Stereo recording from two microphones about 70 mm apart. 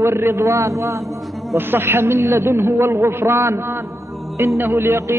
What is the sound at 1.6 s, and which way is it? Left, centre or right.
A man's voice, right.